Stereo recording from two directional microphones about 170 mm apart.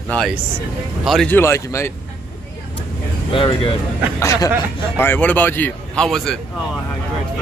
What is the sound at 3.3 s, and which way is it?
Speech, 30° left (ahead or behind).